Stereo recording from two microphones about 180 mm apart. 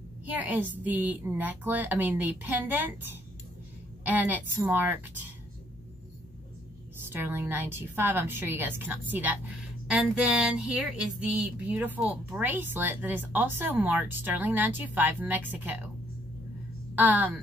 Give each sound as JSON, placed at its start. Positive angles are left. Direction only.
{"t": 0.2, "sound": "a woman's voice", "side_deg": -10}
{"t": 7.1, "sound": "a woman's voice", "side_deg": -10}
{"t": 16.9, "sound": "a woman's voice", "side_deg": -10}